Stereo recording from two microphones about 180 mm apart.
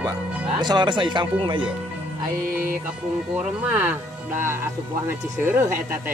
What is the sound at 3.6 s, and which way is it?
Speech, 10° right (ahead or behind).